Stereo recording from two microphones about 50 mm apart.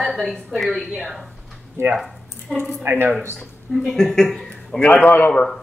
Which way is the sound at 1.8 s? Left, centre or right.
Right.